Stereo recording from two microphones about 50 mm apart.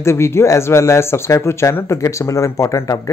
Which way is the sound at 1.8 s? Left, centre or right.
Left.